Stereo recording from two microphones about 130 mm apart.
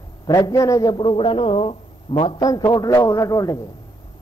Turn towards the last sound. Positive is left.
turn(degrees=25)  # may be behind; listen again after turning